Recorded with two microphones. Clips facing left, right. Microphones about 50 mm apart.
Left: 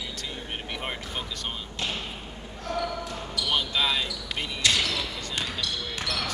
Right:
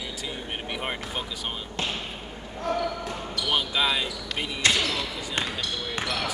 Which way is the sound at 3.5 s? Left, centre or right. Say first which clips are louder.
Right 1 dB; centre.